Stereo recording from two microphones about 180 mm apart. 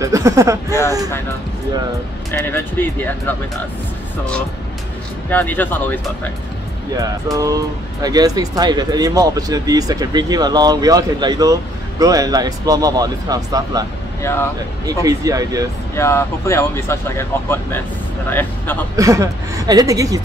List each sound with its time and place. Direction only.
0.0 s speech: 15° right (ahead or behind)
2.3 s speech: 10° left (ahead or behind)
5.3 s speech: 10° left (ahead or behind)
7.0 s speech: 20° right (ahead or behind)
14.2 s speech: 15° left (ahead or behind)
14.9 s speech: 20° right (ahead or behind)
16.0 s speech: 15° left (ahead or behind)
18.9 s speech: 20° right (ahead or behind)